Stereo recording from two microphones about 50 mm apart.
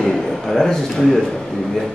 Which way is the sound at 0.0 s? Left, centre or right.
Centre.